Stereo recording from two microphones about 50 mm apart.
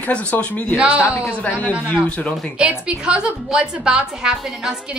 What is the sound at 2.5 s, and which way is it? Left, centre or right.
A woman's voice, centre.